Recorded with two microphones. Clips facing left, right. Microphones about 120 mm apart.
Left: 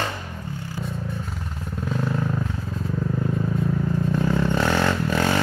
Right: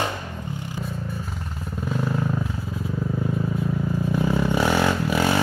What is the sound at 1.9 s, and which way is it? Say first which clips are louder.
Vehicle: even; 5° right (ahead or behind).